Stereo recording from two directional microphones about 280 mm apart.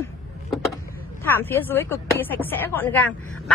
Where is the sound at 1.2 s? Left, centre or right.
Centre.